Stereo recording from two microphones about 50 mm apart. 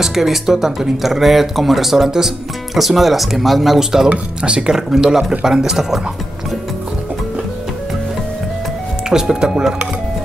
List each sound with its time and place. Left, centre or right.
0.0 s speech: centre
9.1 s speech: centre